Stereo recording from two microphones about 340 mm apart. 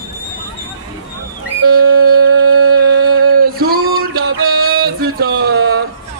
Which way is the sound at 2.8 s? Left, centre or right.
Right.